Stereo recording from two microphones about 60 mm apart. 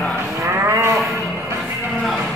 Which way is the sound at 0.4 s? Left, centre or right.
Right.